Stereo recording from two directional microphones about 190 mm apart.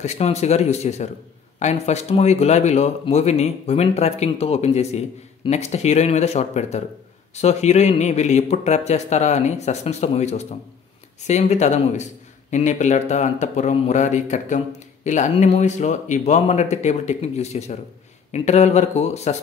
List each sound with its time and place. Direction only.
0.0 s speech: 35° left (ahead or behind)